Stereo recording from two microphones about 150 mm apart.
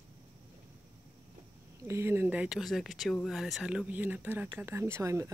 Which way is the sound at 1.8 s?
15° right (ahead or behind).